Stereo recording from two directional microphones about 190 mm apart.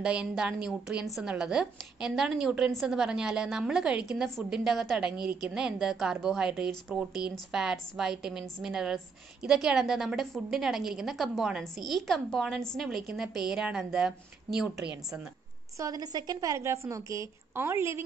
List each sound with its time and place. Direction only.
0.0 s a woman's voice: 5° right (ahead or behind)
15.8 s a woman's voice: 20° right (ahead or behind)